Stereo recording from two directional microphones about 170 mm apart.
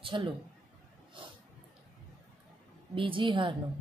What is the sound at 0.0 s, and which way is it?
Speech, 30° right (ahead or behind).